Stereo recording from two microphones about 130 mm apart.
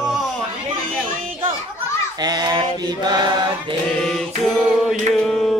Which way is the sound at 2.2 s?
30° right (ahead or behind).